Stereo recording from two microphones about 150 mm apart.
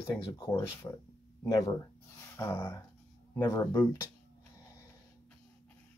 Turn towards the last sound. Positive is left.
turn(degrees=15)  # may be behind; listen again after turning